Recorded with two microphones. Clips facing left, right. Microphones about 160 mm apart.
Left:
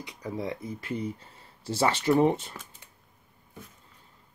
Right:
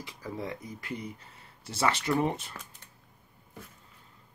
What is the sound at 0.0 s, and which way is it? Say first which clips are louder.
Speech: left 3 dB; 20° left (ahead or behind).